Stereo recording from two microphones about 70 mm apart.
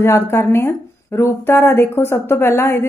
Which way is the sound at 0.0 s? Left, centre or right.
Left.